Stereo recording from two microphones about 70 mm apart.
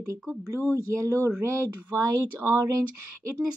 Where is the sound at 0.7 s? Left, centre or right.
Right.